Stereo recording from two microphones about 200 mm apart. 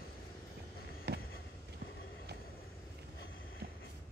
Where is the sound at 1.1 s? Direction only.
55° right (ahead or behind).